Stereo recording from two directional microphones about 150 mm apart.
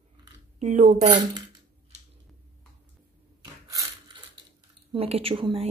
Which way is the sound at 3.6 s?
25° right (ahead or behind).